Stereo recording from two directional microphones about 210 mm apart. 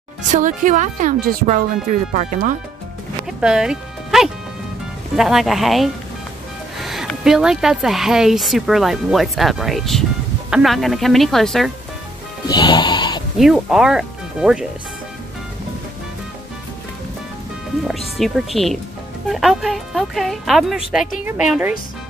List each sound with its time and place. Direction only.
0.3 s speech: 40° right (ahead or behind)
3.3 s music: 5° right (ahead or behind)
5.1 s speech: centre (ahead or behind)
12.4 s music: 20° left (ahead or behind)
13.4 s speech: centre (ahead or behind)
17.8 s speech: centre (ahead or behind)